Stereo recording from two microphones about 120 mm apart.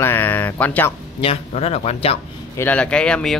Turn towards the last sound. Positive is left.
turn(degrees=5)  # may be behind; listen again after turning